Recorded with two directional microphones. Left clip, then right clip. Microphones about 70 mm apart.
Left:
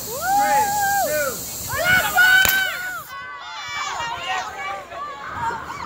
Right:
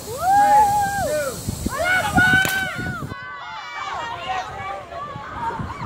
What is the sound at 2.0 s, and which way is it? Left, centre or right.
Run, left.